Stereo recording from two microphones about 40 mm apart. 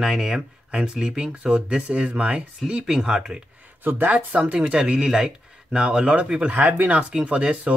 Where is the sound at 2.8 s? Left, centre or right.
Centre.